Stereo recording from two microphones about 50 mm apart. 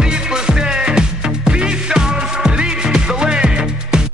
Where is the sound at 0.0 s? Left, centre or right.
Centre.